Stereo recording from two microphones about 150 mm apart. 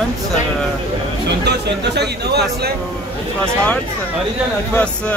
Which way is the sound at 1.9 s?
90° right.